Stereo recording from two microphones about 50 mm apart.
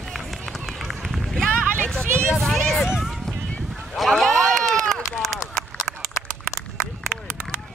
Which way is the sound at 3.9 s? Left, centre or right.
Centre.